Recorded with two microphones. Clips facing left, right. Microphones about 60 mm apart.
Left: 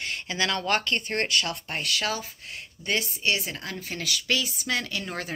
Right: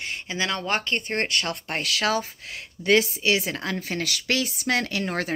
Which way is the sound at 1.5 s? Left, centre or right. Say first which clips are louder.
Right 2 dB; right.